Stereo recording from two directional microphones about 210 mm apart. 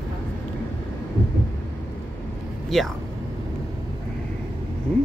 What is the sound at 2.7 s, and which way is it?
Speech, centre (ahead or behind).